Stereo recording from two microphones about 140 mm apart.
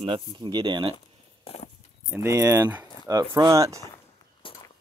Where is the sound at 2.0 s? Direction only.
20° right (ahead or behind).